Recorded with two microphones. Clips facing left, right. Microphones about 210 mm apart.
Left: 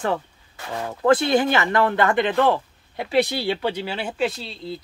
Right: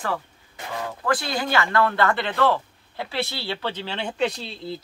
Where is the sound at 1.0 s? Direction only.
25° left (ahead or behind).